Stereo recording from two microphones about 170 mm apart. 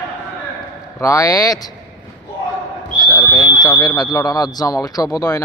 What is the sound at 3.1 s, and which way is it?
Speech, 20° left (ahead or behind).